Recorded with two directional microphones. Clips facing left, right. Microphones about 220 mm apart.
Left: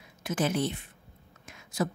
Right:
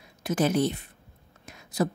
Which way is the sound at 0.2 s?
40° right (ahead or behind).